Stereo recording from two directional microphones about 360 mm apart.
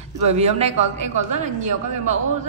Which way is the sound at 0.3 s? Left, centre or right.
Centre.